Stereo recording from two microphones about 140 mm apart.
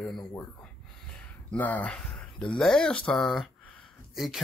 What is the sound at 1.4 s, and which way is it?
Speech, 10° left (ahead or behind).